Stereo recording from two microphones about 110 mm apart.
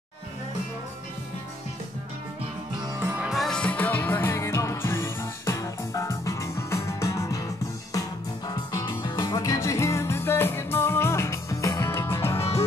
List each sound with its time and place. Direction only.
3.2 s music: centre (ahead or behind); by 7.4 s 30° left (ahead or behind)
8.5 s music: 35° left (ahead or behind)